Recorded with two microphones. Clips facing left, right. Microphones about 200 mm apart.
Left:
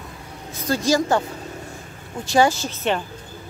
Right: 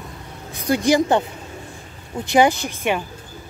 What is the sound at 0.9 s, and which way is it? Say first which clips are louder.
A woman's voice: right 2 dB; 20° right (ahead or behind).